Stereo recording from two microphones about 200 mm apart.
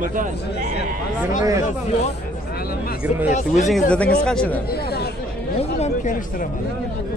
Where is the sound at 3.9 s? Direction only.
5° left (ahead or behind).